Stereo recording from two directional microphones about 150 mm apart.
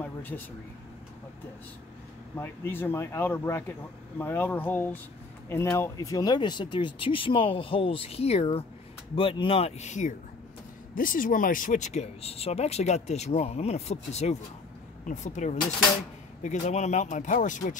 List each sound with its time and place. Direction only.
2.3 s speech: 15° left (ahead or behind); by 10.1 s 50° left (ahead or behind)
11.0 s speech: 65° left (ahead or behind)